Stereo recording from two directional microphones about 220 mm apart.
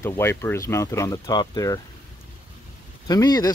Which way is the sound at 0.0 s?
10° left (ahead or behind).